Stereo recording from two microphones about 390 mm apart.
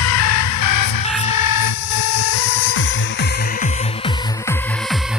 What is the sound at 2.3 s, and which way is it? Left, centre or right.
Music, left.